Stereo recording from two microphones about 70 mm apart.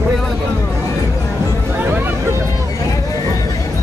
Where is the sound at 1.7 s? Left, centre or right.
Right.